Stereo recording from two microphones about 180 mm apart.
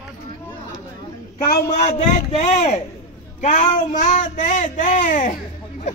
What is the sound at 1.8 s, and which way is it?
A man's voice, 40° left (ahead or behind).